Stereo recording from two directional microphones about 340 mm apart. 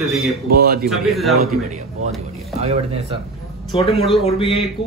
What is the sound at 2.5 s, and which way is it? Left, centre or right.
Speech, centre.